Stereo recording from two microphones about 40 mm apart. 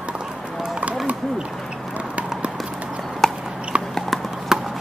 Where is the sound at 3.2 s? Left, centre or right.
Centre.